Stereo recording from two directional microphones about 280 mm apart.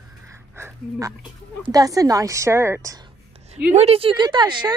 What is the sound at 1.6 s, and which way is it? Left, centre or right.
Speech, centre.